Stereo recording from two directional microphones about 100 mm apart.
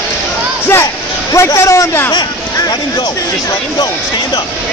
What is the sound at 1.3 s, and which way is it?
Speech, 30° left (ahead or behind).